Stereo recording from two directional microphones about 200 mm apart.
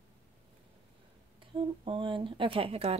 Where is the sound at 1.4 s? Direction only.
25° right (ahead or behind).